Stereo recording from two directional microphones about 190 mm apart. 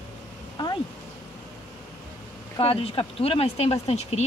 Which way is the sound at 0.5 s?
20° left (ahead or behind).